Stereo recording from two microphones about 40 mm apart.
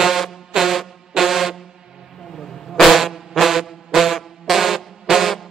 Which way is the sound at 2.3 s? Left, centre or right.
Centre.